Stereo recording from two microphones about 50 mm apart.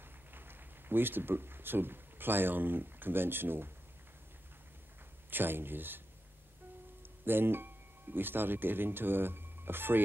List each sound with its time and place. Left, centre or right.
0.3 s speech: right
5.3 s speech: right
7.2 s speech: right